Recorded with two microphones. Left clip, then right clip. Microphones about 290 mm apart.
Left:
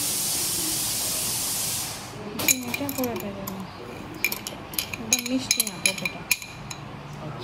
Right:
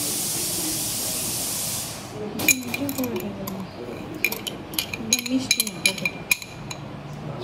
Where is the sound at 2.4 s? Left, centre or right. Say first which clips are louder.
Right 3 dB; centre.